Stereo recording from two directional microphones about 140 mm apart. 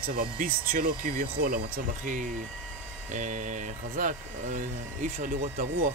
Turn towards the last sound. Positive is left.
turn(degrees=-70)  # may be behind; listen again after turning